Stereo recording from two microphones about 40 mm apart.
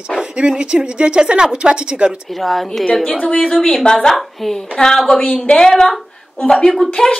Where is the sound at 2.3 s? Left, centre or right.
Centre.